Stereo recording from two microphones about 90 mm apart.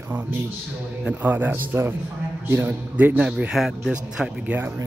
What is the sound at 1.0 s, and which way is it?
A man's voice, 20° right (ahead or behind).